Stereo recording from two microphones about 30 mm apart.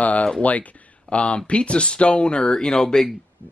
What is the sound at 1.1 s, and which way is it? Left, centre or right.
Speech, left.